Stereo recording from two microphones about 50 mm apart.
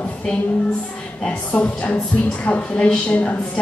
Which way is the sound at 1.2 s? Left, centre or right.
Left.